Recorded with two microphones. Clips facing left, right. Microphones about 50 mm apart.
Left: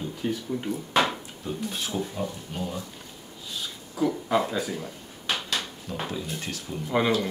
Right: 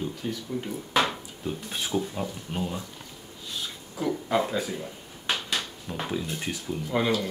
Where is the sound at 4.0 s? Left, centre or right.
Centre.